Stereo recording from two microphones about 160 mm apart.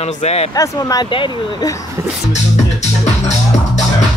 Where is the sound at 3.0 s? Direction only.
45° left (ahead or behind).